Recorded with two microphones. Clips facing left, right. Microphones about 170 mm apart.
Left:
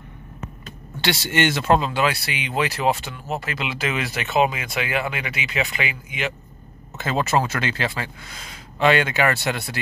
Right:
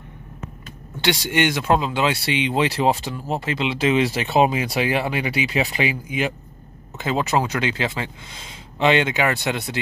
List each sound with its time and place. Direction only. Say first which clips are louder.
1.0 s speech: right 1 dB; 15° right (ahead or behind); by 6.1 s 35° right (ahead or behind)
7.0 s speech: even; 15° right (ahead or behind)